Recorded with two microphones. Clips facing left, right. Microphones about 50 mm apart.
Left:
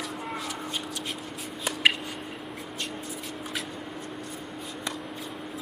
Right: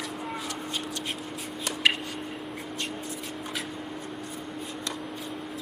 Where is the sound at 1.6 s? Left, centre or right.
Centre.